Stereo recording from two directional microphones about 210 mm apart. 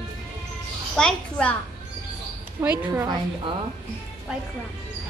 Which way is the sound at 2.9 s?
20° right (ahead or behind).